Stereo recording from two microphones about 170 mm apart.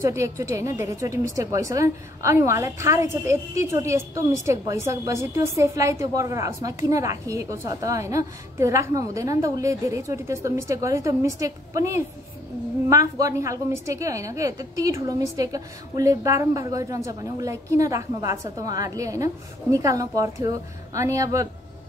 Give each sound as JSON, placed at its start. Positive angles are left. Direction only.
{"t": 0.0, "sound": "a woman's voice", "side_deg": -15}